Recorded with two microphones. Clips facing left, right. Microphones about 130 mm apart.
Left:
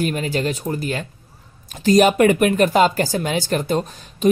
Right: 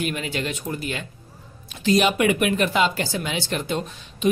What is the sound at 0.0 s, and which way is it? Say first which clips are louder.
Speech: left 5 dB; 40° left (ahead or behind).